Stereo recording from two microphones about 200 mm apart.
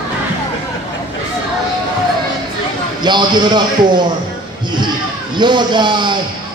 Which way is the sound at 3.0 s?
20° right (ahead or behind).